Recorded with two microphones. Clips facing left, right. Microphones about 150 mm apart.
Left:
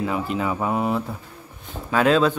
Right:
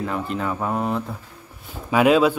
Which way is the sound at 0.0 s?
5° left (ahead or behind).